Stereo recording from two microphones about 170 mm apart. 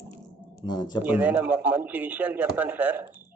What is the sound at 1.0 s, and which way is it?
Speech, 10° right (ahead or behind).